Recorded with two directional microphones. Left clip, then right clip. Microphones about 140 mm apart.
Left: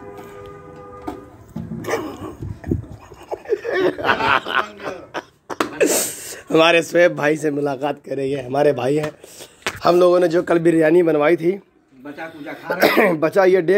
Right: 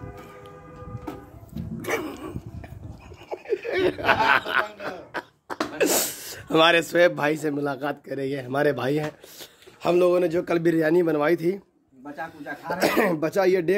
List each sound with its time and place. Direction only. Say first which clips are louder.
1.5 s dog: left 4 dB; 15° right (ahead or behind)
3.3 s snicker: left 6 dB; 5° right (ahead or behind)
9.8 s speech: left 6 dB; 5° right (ahead or behind)
11.1 s speech: left 6 dB; 15° right (ahead or behind)
12.6 s speech: left 7 dB; 5° right (ahead or behind)